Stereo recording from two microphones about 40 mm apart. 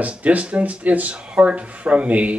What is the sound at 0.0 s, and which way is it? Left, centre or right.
Speech, right.